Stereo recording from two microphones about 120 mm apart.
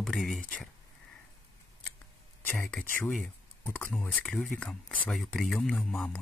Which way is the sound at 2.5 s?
10° left (ahead or behind).